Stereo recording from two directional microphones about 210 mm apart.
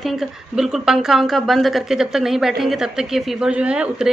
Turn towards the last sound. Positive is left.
turn(degrees=-5)  # may be behind; listen again after turning